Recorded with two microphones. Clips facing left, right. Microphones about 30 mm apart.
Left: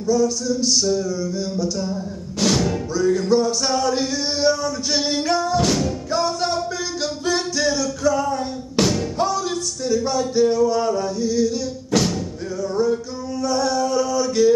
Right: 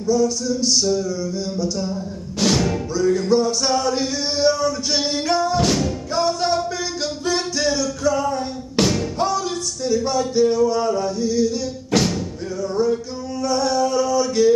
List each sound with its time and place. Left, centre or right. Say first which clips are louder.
0.0 s music: even; centre
2.4 s music: even; centre
9.8 s a sound: right 1 dB; centre
11.9 s music: right 1 dB; right
12.7 s male singing: even; centre